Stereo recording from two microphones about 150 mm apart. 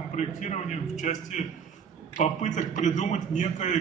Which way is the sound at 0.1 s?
50° left (ahead or behind).